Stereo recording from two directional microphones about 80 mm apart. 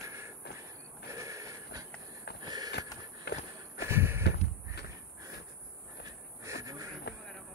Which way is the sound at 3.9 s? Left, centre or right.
Right.